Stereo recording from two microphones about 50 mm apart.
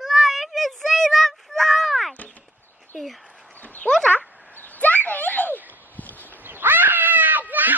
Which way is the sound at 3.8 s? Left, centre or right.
Right.